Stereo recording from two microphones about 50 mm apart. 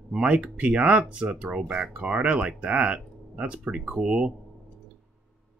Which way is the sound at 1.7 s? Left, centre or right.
Centre.